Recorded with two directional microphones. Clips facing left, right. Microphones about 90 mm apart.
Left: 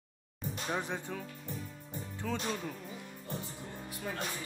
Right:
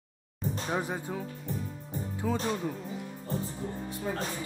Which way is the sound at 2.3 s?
10° right (ahead or behind).